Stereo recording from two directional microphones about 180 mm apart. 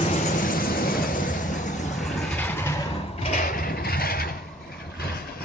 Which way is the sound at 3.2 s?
40° left (ahead or behind).